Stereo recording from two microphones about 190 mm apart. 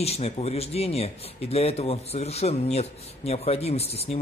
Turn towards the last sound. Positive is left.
turn(degrees=30)  # may be behind; listen again after turning